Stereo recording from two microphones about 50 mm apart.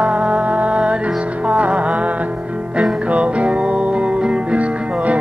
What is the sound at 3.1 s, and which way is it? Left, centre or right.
Music, right.